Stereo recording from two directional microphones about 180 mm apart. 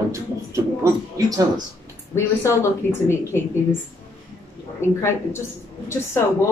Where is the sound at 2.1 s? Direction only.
15° left (ahead or behind).